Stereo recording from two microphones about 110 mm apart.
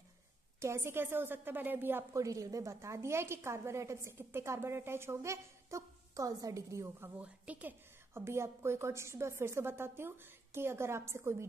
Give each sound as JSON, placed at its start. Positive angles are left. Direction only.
{"t": 0.6, "sound": "a woman's voice", "side_deg": -25}
{"t": 2.1, "sound": "a woman's voice", "side_deg": -30}
{"t": 7.2, "sound": "a woman's voice", "side_deg": -15}